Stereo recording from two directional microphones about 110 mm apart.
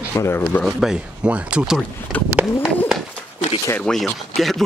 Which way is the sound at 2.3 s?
5° right (ahead or behind).